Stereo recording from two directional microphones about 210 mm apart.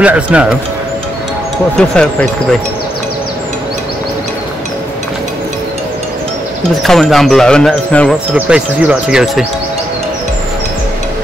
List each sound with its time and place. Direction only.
0.0 s speech: 5° right (ahead or behind)
1.8 s speech: 5° left (ahead or behind)
6.8 s speech: centre (ahead or behind)